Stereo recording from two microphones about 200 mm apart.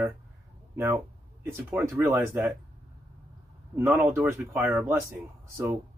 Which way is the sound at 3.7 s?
10° right (ahead or behind).